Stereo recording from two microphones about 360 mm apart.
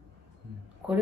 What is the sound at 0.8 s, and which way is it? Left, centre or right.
Speech, centre.